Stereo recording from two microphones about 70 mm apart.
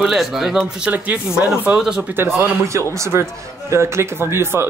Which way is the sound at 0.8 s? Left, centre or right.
Right.